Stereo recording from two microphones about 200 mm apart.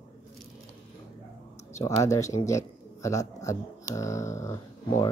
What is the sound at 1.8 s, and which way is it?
Speech, 15° left (ahead or behind).